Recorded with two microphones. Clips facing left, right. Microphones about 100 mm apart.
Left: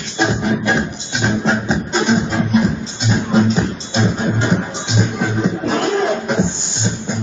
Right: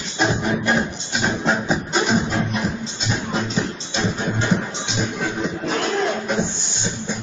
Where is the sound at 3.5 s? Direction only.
20° left (ahead or behind).